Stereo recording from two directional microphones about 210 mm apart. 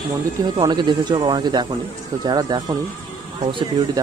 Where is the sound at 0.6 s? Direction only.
20° right (ahead or behind).